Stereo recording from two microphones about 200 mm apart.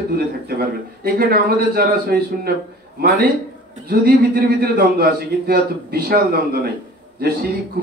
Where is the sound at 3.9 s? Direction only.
50° right (ahead or behind).